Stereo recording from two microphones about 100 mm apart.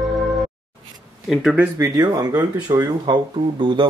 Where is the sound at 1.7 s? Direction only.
30° right (ahead or behind).